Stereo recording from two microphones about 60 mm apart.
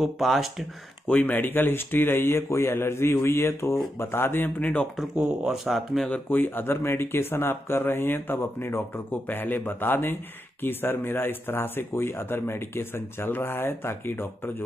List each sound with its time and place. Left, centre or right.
0.0 s speech: centre
1.0 s speech: left
4.6 s speech: left
5.1 s speech: centre
6.3 s speech: left